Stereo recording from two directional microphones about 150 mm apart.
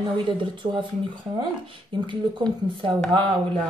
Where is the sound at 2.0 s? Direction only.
30° right (ahead or behind).